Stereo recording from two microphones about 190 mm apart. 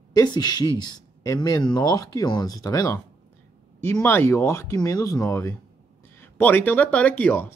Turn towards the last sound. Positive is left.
turn(degrees=10)  # may be behind; listen again after turning